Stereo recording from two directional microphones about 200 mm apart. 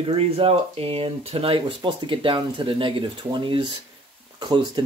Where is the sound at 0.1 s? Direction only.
30° right (ahead or behind).